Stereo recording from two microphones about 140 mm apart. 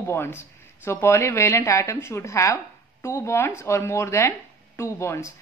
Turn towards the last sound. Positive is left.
turn(degrees=20)  # may be behind; listen again after turning